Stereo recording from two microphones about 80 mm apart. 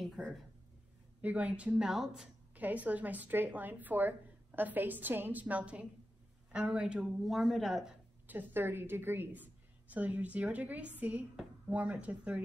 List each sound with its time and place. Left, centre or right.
1.2 s speech: centre
2.5 s a woman's voice: centre
8.3 s a woman's voice: right